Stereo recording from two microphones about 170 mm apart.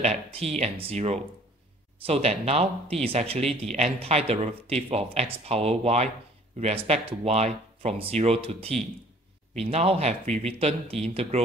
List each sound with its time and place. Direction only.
0.0 s speech: 40° right (ahead or behind)